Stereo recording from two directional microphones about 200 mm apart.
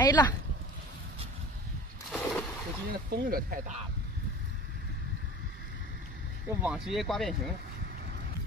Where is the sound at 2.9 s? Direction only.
45° right (ahead or behind).